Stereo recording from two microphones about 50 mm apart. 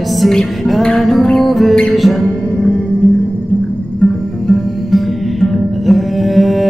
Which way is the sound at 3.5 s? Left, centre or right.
Left.